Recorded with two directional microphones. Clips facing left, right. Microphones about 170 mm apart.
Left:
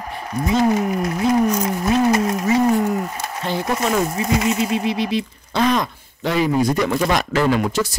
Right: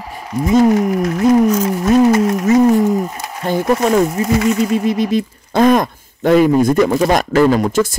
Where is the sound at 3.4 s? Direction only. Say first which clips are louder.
Right 7 dB; 45° right (ahead or behind).